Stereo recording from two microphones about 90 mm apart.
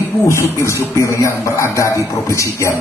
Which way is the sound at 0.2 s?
30° left (ahead or behind).